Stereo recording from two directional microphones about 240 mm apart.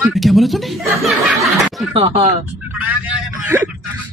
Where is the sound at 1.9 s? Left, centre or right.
Right.